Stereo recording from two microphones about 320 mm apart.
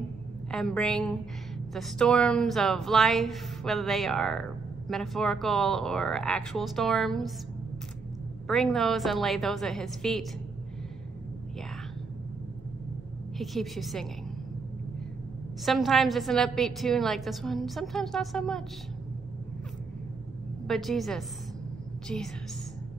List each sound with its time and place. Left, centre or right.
0.5 s a woman's voice: centre
8.5 s a woman's voice: centre
13.4 s a woman's voice: centre
15.6 s a woman's voice: centre
20.6 s a woman's voice: centre